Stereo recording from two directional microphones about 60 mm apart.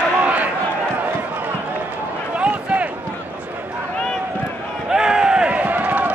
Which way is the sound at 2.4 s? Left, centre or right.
Right.